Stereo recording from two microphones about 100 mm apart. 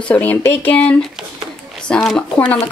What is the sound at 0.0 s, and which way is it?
Speech, 15° left (ahead or behind).